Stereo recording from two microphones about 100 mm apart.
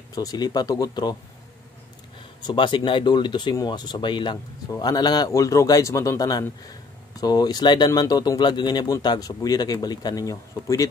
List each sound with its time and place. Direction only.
0.1 s speech: 40° left (ahead or behind)
2.4 s speech: 50° left (ahead or behind); by 10.9 s 35° left (ahead or behind)